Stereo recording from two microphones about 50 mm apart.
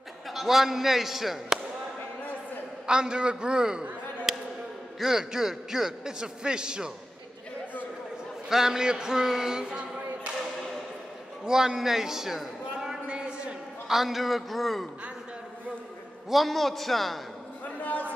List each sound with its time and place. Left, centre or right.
0.3 s speech: centre
2.9 s a man's voice: centre
4.3 s basketball bounce: centre
4.9 s a man's voice: centre
8.5 s speech: centre
11.4 s a sound: centre
13.8 s a man's voice: centre
16.3 s a man's voice: centre